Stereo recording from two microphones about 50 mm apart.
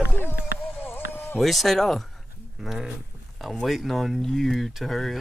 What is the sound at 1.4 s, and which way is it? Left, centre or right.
Speech, centre.